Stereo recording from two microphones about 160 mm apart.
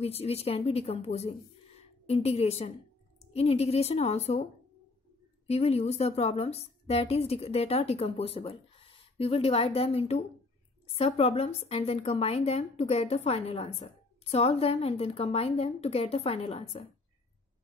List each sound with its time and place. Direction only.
0.0 s a woman's voice: 40° left (ahead or behind)
5.5 s a woman's voice: 40° left (ahead or behind)